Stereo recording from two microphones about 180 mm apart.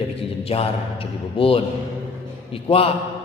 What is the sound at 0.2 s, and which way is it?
A man's voice, 35° left (ahead or behind).